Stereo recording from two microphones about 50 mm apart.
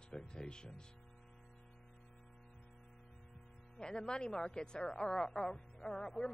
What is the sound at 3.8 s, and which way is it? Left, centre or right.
A woman's voice, centre.